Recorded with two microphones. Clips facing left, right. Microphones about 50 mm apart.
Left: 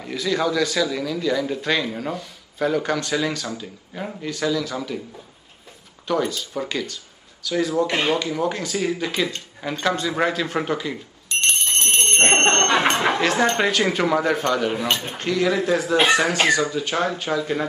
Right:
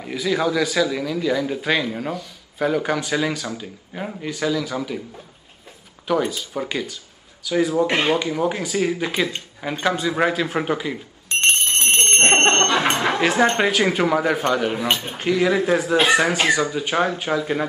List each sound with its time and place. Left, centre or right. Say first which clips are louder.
0.0 s speech: right 1 dB; centre
6.0 s speech: right 1 dB; centre
11.2 s a sound: right 3 dB; right
12.3 s music: right 2 dB; right
13.2 s speech: right 2 dB; centre